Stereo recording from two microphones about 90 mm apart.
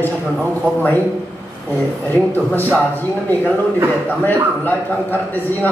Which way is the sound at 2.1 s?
20° left (ahead or behind).